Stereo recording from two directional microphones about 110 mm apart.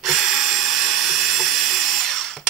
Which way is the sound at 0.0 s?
Centre (ahead or behind).